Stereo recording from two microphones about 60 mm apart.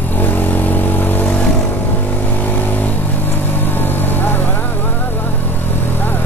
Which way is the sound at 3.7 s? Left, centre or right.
Left.